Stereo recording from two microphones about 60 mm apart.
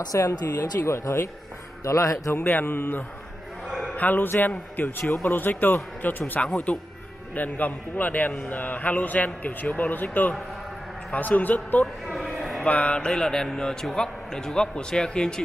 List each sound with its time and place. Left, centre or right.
0.1 s speech: left
0.5 s a man's voice: left
2.4 s a man's voice: left
11.8 s a sound: centre
12.6 s a man's voice: left